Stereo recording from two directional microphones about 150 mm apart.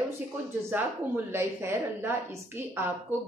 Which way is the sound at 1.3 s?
15° right (ahead or behind).